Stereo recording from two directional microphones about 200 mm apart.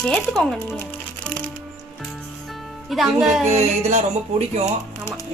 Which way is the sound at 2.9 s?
Centre (ahead or behind).